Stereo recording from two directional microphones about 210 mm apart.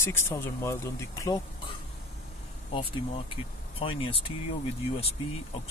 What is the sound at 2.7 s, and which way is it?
Speech, 25° left (ahead or behind).